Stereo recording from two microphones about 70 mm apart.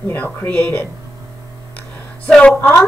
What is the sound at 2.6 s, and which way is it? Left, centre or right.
Speech, left.